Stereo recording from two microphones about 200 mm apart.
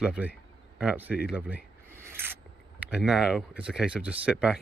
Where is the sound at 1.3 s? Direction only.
10° right (ahead or behind).